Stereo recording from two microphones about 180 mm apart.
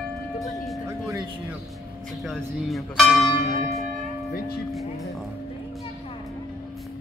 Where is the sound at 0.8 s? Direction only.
15° right (ahead or behind).